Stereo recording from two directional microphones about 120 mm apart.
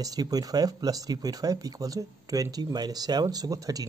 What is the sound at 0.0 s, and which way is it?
A man's voice, 30° right (ahead or behind).